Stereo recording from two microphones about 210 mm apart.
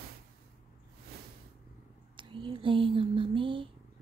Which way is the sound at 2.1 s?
25° right (ahead or behind).